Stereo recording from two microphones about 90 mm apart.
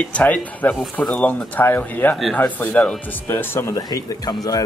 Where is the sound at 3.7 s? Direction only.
45° left (ahead or behind).